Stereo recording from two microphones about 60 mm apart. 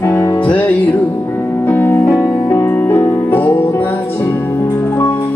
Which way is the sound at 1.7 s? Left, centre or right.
Left.